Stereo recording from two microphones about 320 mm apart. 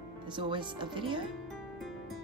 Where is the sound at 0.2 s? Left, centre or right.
Centre.